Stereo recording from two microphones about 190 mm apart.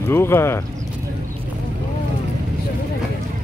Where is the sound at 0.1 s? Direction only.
15° left (ahead or behind).